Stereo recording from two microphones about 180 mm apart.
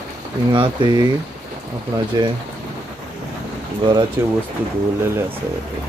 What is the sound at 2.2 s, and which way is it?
Speech, 25° right (ahead or behind).